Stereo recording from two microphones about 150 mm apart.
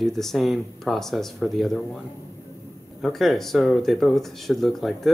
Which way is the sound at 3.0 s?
Centre (ahead or behind).